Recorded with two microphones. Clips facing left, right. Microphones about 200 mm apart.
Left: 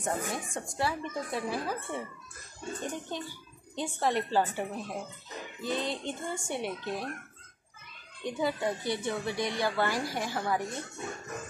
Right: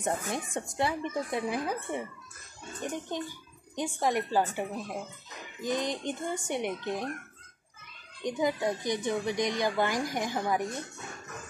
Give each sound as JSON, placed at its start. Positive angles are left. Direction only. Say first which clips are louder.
{"t": 0.0, "sound": "a woman's voice", "louder": "right 1 dB", "side_deg": -20}
{"t": 8.2, "sound": "a woman's voice", "louder": "right 2 dB", "side_deg": -15}